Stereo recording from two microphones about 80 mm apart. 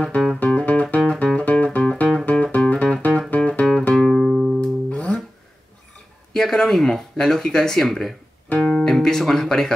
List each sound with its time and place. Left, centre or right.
0.0 s music: centre
3.9 s music: centre
4.6 s music: centre
6.3 s speech: centre